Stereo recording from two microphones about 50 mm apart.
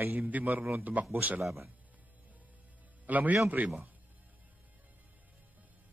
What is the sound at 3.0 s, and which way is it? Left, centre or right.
Speech, right.